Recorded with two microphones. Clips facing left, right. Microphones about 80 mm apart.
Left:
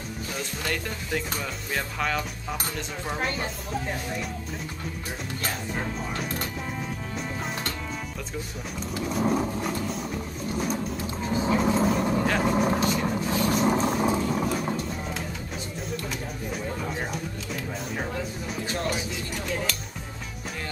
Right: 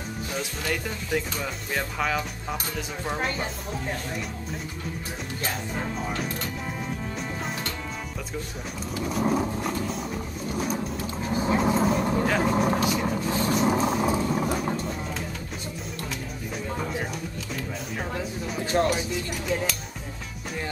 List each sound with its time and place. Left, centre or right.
0.3 s speech: centre
9.1 s speech: centre
11.5 s vehicle: centre
13.5 s a sound: centre
18.7 s speech: right
19.4 s music: centre